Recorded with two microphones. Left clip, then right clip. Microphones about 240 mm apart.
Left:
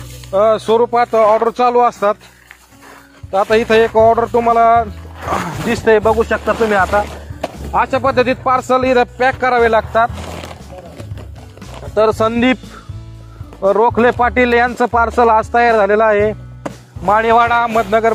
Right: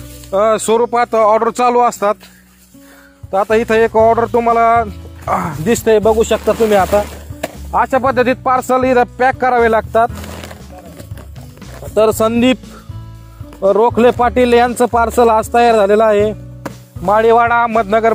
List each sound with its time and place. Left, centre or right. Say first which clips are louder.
0.3 s speech: even; right
3.3 s a man's voice: even; right
7.7 s a man's voice: right 1 dB; right
11.9 s speech: right 1 dB; right
13.6 s a man's voice: right 1 dB; right